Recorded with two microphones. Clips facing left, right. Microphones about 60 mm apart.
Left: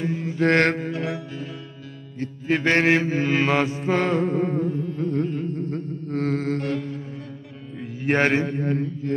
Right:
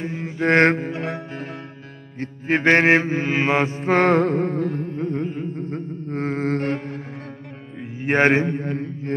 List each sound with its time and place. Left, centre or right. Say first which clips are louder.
0.0 s music: left 1 dB; right
1.0 s music: right 1 dB; right
2.1 s mantra: right 2 dB; right
3.8 s music: right 5 dB; right
4.9 s music: even; right
5.2 s music: left 1 dB; centre; by 6.8 s right
7.8 s mantra: right 3 dB; right